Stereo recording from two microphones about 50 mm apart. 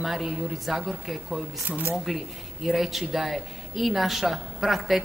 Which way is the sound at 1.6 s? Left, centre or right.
Right.